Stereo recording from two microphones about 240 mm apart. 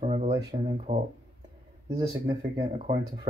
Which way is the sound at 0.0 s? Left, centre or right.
Right.